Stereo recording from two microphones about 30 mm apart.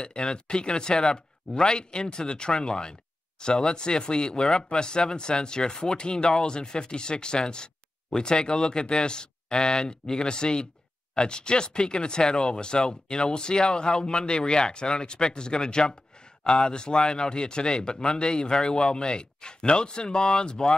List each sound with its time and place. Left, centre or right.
0.0 s speech: left